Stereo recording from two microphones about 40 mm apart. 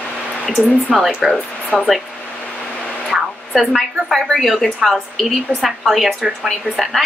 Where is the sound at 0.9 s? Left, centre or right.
Centre.